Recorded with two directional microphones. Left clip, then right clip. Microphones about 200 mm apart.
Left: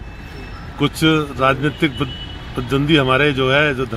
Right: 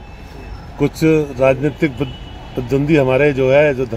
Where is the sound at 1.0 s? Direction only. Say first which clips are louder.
Right 3 dB; 5° right (ahead or behind).